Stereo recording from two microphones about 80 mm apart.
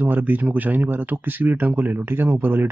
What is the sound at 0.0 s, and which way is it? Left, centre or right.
A man's voice, right.